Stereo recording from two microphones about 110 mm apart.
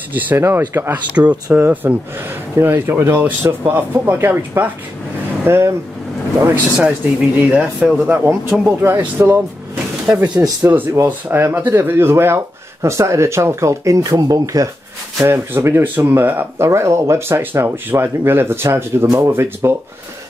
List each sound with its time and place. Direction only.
0.1 s speech: 20° right (ahead or behind)
6.8 s speech: 10° right (ahead or behind); by 14.7 s 30° right (ahead or behind)
15.2 s speech: 20° right (ahead or behind)